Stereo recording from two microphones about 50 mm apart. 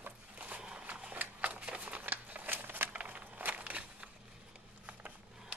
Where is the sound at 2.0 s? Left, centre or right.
Right.